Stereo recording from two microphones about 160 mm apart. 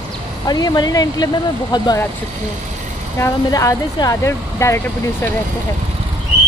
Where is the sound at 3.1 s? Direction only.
20° left (ahead or behind).